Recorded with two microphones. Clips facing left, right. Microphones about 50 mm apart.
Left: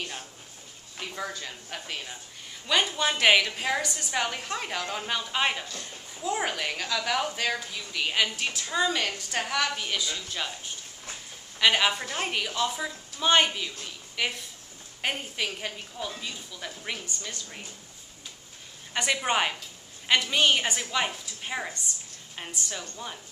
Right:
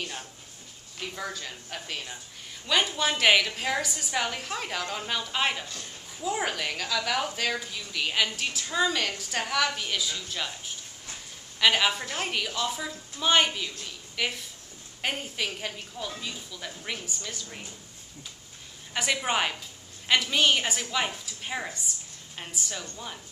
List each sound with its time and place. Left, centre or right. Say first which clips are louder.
0.9 s a woman's voice: even; centre
18.9 s a woman's voice: left 1 dB; centre